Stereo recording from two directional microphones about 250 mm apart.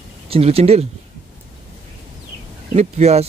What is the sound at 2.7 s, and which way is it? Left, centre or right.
Speech, right.